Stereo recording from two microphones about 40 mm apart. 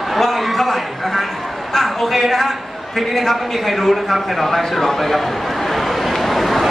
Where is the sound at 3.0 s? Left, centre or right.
Centre.